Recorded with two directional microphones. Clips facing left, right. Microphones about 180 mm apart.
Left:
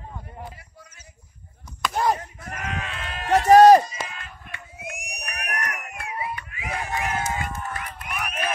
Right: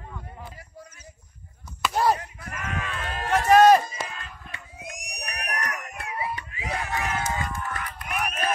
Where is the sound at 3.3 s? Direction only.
40° left (ahead or behind).